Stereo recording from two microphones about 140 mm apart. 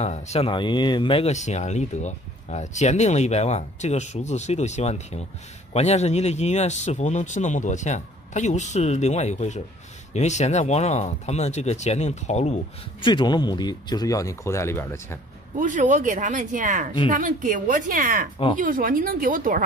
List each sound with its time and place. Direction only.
0.0 s speech: 50° left (ahead or behind)
0.5 s speech: 35° left (ahead or behind)
1.2 s a man's voice: 55° left (ahead or behind)
13.0 s speech: 30° left (ahead or behind); by 15.1 s 15° left (ahead or behind)
15.5 s a woman's voice: 65° right (ahead or behind)